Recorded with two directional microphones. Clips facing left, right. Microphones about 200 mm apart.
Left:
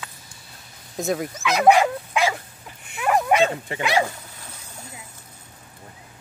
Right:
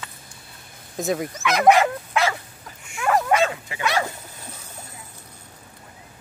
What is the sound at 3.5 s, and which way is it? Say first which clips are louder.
Speech: left 4 dB; 35° left (ahead or behind).